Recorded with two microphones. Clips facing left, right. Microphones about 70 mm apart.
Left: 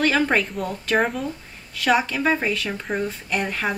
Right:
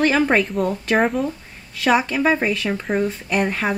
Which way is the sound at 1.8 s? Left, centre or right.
Centre.